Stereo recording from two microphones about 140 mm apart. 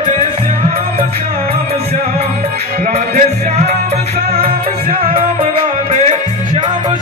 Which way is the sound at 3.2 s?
55° right (ahead or behind).